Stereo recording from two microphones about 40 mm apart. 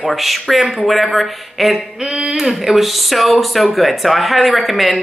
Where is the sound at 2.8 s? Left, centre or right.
Centre.